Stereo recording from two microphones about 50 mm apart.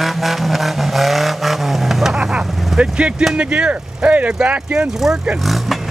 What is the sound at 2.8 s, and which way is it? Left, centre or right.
Speech, right.